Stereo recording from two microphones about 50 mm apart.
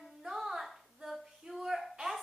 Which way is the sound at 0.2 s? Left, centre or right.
Centre.